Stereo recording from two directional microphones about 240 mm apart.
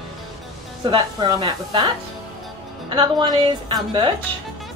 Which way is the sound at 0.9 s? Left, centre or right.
Centre.